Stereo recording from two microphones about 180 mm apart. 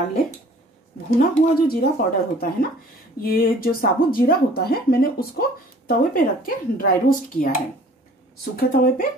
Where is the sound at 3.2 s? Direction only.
55° left (ahead or behind).